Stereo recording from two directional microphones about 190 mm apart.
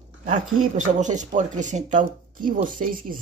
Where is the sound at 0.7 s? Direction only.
40° right (ahead or behind).